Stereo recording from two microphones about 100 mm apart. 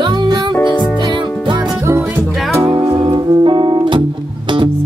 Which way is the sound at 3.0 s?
50° right (ahead or behind).